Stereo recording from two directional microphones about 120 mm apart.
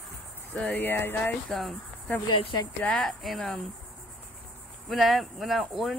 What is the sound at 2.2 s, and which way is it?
Speech, 45° left (ahead or behind).